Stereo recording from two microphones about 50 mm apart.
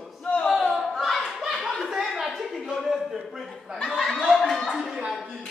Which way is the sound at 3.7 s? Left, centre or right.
Centre.